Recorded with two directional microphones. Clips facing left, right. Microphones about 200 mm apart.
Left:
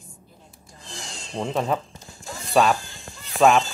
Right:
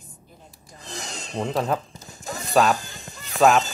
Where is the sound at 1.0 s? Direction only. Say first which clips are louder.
Right 1 dB; 20° right (ahead or behind).